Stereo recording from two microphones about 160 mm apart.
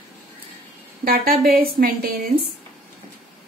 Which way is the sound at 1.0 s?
70° right (ahead or behind).